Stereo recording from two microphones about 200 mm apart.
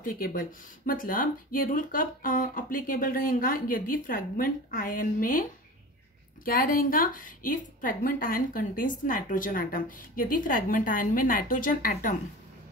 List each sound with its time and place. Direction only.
0.0 s a woman's voice: 45° left (ahead or behind)